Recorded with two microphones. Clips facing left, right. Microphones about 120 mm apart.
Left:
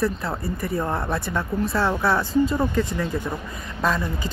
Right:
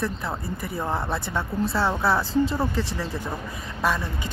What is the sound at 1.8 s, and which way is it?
Speech, 5° right (ahead or behind).